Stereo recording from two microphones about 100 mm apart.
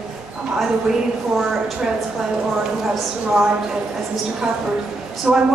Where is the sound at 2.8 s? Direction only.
Centre (ahead or behind).